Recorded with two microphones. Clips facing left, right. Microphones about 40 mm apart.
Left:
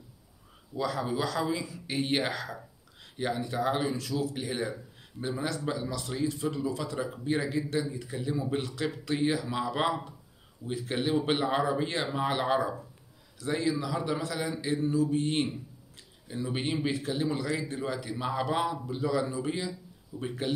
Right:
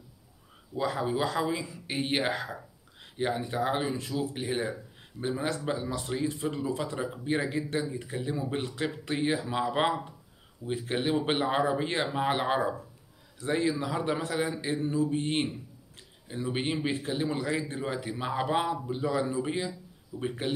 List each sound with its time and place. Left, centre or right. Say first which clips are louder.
0.7 s speech: right 1 dB; right
11.0 s speech: even; right
16.4 s speech: right 1 dB; centre